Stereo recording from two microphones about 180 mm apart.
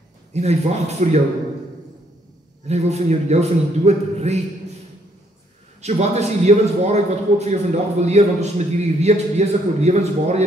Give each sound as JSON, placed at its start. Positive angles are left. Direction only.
{"t": 0.3, "sound": "a man's voice", "side_deg": -40}
{"t": 2.7, "sound": "a man's voice", "side_deg": -35}
{"t": 5.8, "sound": "a man's voice", "side_deg": -35}